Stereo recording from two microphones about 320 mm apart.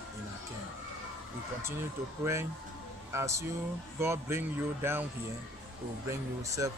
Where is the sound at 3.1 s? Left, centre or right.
Centre.